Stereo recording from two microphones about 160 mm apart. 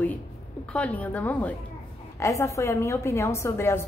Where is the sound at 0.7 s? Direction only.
10° left (ahead or behind).